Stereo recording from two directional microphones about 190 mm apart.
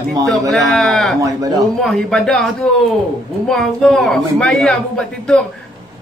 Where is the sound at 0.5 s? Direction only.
Centre (ahead or behind).